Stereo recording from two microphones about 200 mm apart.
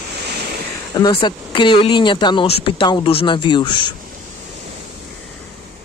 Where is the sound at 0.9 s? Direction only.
20° left (ahead or behind).